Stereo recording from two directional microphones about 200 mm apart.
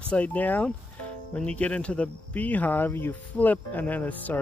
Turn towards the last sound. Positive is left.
turn(degrees=10)  # may be behind; listen again after turning